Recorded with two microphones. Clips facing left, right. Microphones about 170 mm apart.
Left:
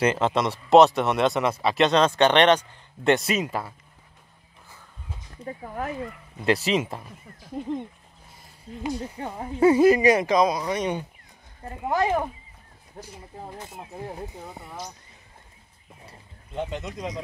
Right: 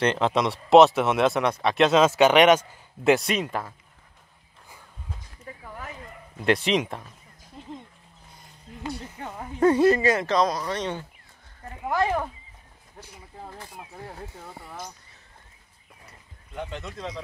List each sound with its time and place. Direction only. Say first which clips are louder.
0.0 s speech: even; centre (ahead or behind)
5.4 s a sound: left 11 dB; 35° left (ahead or behind)
6.4 s speech: even; 5° left (ahead or behind)
9.2 s speech: left 4 dB; 30° left (ahead or behind)
9.6 s speech: left 2 dB; 10° left (ahead or behind)
16.1 s speech: left 3 dB; 20° left (ahead or behind)